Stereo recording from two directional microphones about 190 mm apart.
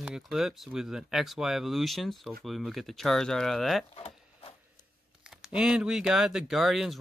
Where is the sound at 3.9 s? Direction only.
30° left (ahead or behind).